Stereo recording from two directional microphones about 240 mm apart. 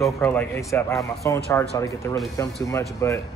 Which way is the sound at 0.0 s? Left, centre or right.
Centre.